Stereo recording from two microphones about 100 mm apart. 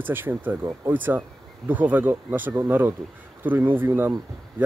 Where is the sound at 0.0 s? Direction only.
20° right (ahead or behind).